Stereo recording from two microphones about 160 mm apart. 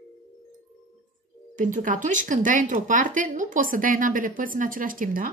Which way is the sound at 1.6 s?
55° right (ahead or behind).